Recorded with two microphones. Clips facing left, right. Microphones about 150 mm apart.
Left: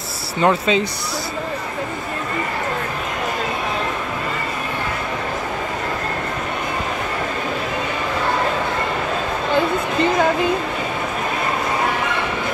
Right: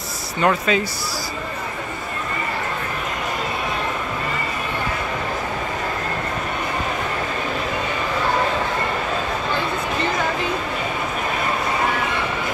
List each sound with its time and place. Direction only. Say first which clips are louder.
0.4 s speech: left 2 dB; 25° left (ahead or behind)